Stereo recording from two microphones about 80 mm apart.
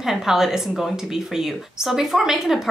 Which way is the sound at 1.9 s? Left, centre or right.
Centre.